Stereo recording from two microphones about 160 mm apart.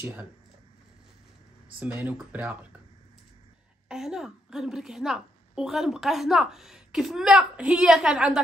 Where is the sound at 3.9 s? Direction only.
5° right (ahead or behind).